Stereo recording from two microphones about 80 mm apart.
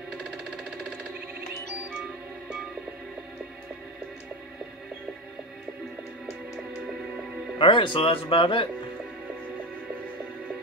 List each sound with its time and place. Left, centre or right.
7.5 s speech: left